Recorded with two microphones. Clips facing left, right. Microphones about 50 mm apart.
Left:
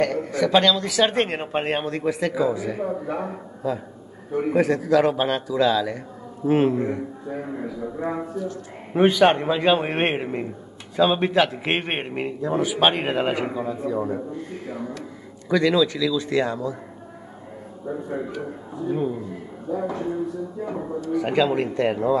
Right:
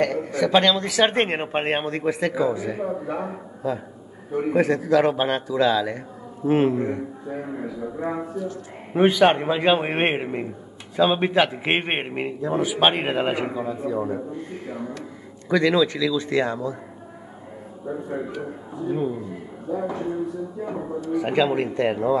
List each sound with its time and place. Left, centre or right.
0.0 s speech: right
2.8 s a man's voice: centre
3.6 s speech: right
4.3 s a man's voice: centre
4.6 s a man's voice: right
17.8 s a man's voice: centre